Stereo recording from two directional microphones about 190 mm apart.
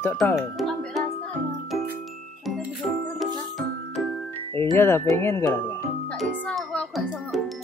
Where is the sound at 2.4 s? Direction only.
Centre (ahead or behind).